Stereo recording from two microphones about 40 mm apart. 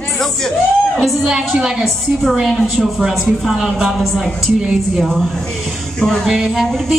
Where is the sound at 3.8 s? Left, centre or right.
Centre.